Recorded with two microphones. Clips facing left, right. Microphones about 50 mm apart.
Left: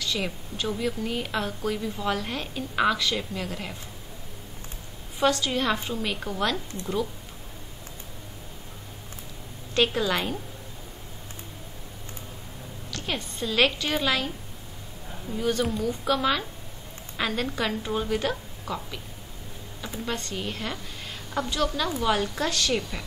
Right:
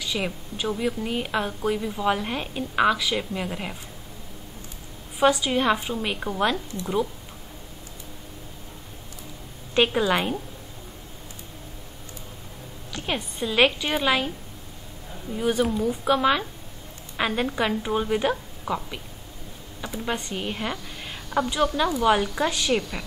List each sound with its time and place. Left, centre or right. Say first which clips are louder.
0.0 s a woman's voice: right 1 dB; centre
5.2 s a woman's voice: right 3 dB; centre
9.8 s a woman's voice: right 3 dB; centre
12.9 s a woman's voice: right 3 dB; centre
15.3 s a woman's voice: right 3 dB; centre